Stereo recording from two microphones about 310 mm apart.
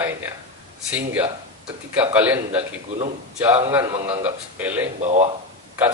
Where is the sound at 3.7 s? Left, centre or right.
Centre.